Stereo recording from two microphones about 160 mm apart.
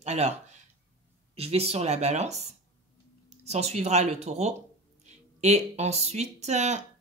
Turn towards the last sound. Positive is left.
turn(degrees=-45)  # may be behind; listen again after turning